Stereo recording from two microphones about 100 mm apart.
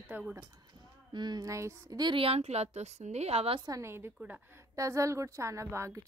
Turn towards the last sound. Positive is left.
turn(degrees=-30)  # may be behind; listen again after turning